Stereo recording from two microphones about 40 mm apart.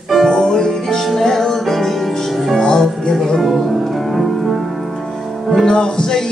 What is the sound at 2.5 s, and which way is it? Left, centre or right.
Music, centre.